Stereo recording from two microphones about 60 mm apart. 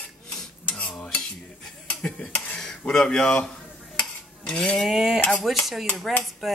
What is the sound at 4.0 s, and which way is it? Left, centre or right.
Stir, centre.